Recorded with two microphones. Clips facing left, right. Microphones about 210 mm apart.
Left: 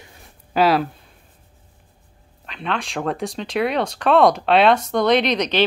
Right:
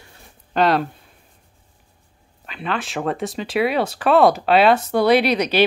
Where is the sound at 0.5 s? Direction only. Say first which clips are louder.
Left 1 dB; 5° left (ahead or behind).